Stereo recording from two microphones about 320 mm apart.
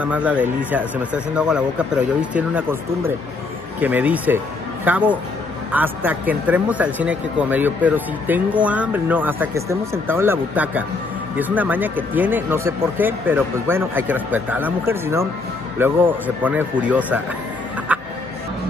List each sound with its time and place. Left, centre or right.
0.0 s speech: centre
17.9 s music: centre